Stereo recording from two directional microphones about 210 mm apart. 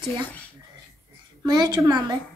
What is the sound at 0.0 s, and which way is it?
Speech, 5° left (ahead or behind).